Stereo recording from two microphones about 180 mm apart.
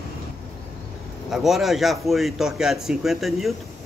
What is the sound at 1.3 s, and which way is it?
A man's voice, centre (ahead or behind).